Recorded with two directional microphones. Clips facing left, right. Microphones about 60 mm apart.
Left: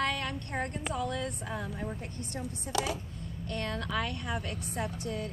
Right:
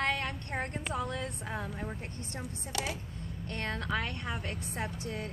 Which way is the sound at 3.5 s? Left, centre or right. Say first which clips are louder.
Even; right.